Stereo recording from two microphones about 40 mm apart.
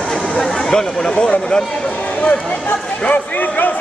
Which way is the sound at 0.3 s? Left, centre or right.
Centre.